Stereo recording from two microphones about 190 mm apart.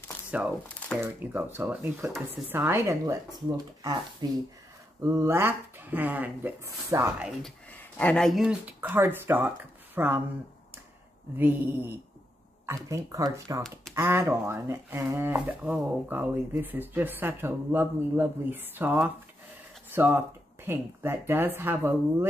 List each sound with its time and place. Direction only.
0.3 s speech: 5° right (ahead or behind)
7.4 s speech: 5° left (ahead or behind); by 10.2 s 10° right (ahead or behind)
11.3 s speech: 10° right (ahead or behind)
13.6 s speech: 5° left (ahead or behind)
13.9 s speech: 15° right (ahead or behind)